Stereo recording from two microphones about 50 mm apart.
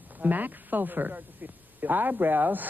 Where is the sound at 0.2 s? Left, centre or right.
Right.